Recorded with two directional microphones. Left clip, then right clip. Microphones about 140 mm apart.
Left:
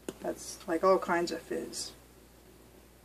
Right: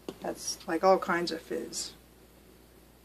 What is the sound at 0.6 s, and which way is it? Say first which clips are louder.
Speech: right 2 dB; 20° right (ahead or behind).